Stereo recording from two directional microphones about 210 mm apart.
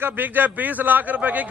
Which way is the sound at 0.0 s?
10° right (ahead or behind).